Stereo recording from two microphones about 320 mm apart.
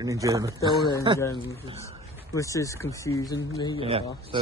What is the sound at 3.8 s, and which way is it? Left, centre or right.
Speech, centre.